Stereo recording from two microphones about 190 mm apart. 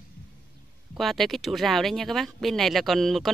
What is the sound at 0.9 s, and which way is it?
Speech, centre (ahead or behind).